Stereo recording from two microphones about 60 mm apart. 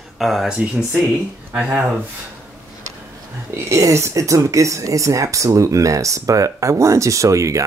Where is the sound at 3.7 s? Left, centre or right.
Right.